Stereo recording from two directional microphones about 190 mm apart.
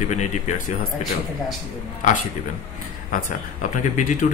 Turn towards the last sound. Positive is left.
turn(degrees=40)  # may be behind; listen again after turning